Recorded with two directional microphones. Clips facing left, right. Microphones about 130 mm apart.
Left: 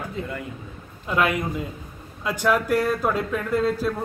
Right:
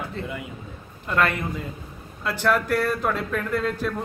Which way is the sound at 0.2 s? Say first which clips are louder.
Left 1 dB; 10° left (ahead or behind).